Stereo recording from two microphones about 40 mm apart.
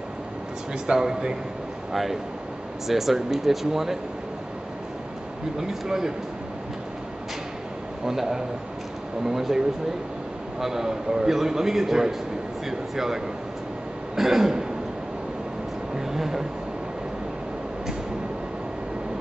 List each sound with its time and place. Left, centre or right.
0.8 s a man's voice: centre
1.9 s a man's voice: centre
5.6 s a man's voice: centre
8.0 s a man's voice: centre
10.6 s a man's voice: centre
14.1 s throat clearing: centre
16.1 s a man's voice: centre